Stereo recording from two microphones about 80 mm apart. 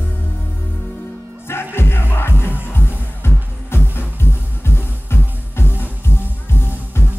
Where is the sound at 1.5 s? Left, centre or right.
Left.